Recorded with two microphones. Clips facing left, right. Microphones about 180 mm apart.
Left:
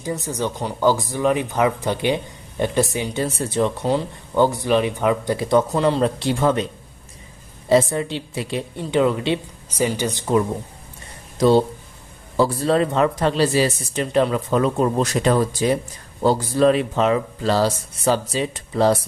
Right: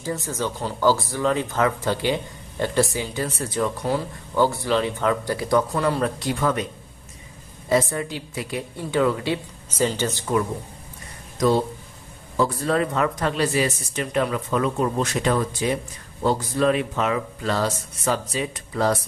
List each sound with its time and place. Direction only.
0.0 s speech: 20° left (ahead or behind)
7.7 s speech: 25° left (ahead or behind)
9.7 s speech: 10° left (ahead or behind); by 18.9 s 30° left (ahead or behind)